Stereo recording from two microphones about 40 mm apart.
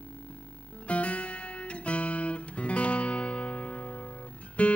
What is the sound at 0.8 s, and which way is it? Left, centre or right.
Guitar, left.